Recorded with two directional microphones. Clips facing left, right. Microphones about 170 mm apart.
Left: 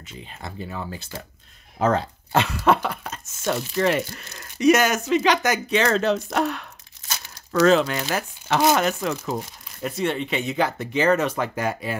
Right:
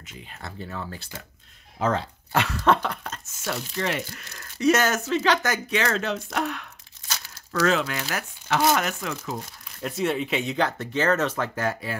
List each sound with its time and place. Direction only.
0.0 s speech: 25° left (ahead or behind)
1.8 s speech: 45° left (ahead or behind)
2.5 s speech: 10° left (ahead or behind)
3.7 s speech: 50° left (ahead or behind)
4.2 s speech: 20° left (ahead or behind)
5.8 s speech: 35° left (ahead or behind)
9.8 s speech: centre (ahead or behind); by 12.0 s 15° left (ahead or behind)